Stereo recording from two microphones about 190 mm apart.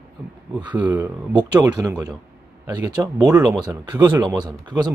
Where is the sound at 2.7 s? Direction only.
20° right (ahead or behind).